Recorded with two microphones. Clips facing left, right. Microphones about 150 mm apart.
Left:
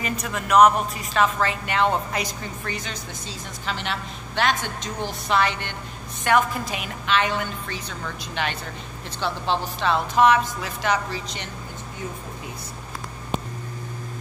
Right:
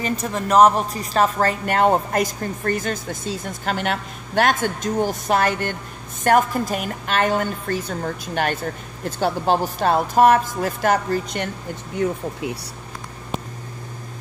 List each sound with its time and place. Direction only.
0.0 s a woman's voice: 35° right (ahead or behind); by 12.5 s 70° right (ahead or behind)